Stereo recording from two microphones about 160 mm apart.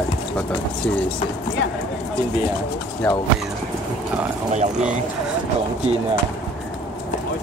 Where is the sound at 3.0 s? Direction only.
10° left (ahead or behind).